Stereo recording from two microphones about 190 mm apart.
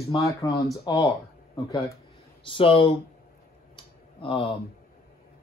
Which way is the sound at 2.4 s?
30° left (ahead or behind).